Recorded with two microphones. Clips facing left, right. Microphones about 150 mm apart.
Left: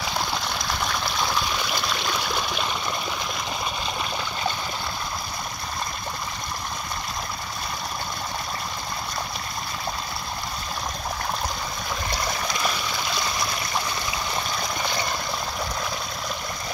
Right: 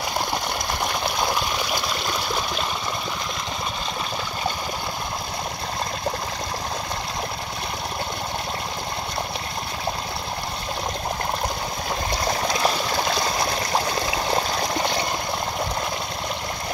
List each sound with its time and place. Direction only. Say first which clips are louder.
0.8 s water: right 3 dB; 15° right (ahead or behind)
12.3 s stream: right 7 dB; 35° right (ahead or behind)
14.2 s water: right 6 dB; 40° right (ahead or behind)